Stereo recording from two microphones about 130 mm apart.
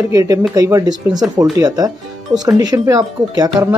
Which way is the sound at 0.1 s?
25° right (ahead or behind).